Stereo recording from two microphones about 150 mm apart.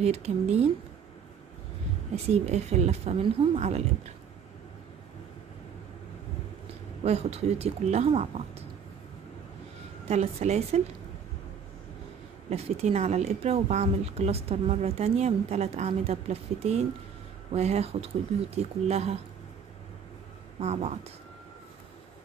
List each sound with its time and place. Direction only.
0.0 s speech: 45° right (ahead or behind)
2.1 s speech: 45° right (ahead or behind)
7.0 s speech: 45° right (ahead or behind)
10.0 s speech: 45° right (ahead or behind)
12.4 s speech: 45° right (ahead or behind)
20.6 s speech: 45° right (ahead or behind)